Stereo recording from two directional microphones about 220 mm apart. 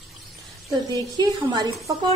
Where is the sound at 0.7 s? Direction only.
20° right (ahead or behind).